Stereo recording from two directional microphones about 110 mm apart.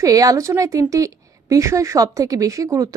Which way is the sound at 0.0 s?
30° right (ahead or behind).